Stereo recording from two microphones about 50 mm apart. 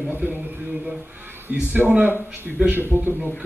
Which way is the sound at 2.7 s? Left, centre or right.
Right.